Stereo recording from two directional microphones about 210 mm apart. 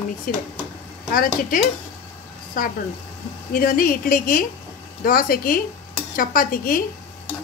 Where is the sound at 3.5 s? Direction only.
45° left (ahead or behind).